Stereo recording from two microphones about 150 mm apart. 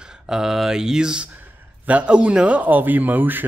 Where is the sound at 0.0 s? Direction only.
5° right (ahead or behind).